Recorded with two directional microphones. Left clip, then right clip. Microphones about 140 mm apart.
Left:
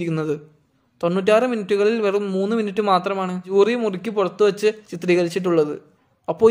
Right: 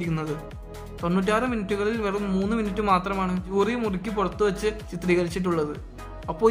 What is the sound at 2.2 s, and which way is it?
Speech, 15° left (ahead or behind).